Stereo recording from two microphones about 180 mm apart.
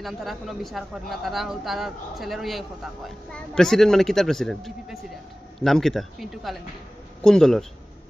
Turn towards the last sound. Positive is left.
turn(degrees=5)  # may be behind; listen again after turning